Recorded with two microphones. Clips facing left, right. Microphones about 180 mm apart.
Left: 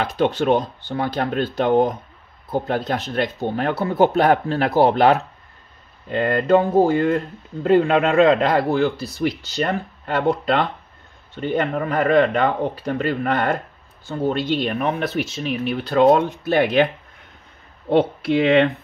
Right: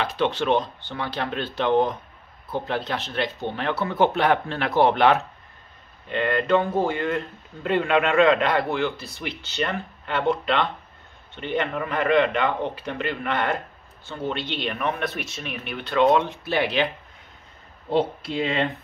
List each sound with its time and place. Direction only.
0.1 s speech: 40° left (ahead or behind)
17.8 s speech: 65° left (ahead or behind)